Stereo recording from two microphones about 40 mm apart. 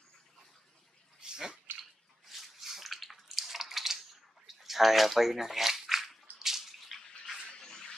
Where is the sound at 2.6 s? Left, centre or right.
Centre.